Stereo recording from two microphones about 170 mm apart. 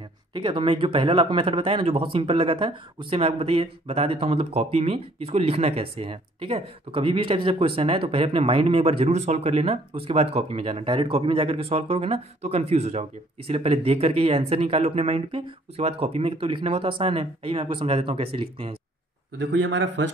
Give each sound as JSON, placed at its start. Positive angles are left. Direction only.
{"t": 0.3, "sound": "speech", "side_deg": -30}
{"t": 19.3, "sound": "speech", "side_deg": -90}